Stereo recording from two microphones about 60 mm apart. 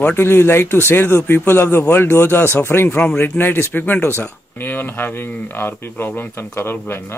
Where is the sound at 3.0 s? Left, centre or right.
Left.